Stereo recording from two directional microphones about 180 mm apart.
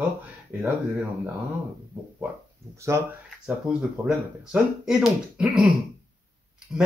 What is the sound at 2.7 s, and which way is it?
Speech, 15° right (ahead or behind).